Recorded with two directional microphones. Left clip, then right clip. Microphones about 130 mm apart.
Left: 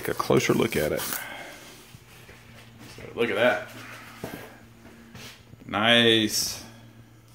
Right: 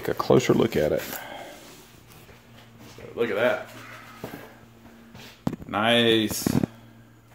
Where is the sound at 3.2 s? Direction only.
25° left (ahead or behind).